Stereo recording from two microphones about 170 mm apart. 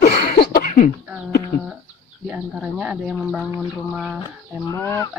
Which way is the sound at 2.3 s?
5° right (ahead or behind).